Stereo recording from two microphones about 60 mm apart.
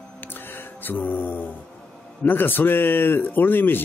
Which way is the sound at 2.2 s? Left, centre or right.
Left.